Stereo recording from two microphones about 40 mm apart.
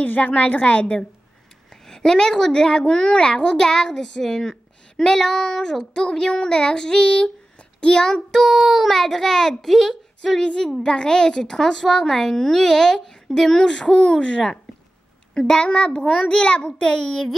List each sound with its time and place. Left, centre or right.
0.0 s a woman's voice: left
1.7 s a woman's voice: centre
4.2 s a woman's voice: centre
7.5 s a sound: left
8.0 s a woman's voice: centre
8.6 s a woman's voice: centre; by 15.7 s left
15.7 s a child's voice: left